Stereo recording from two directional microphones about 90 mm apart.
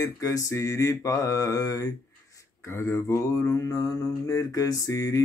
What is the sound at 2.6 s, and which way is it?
Mantra, 30° left (ahead or behind).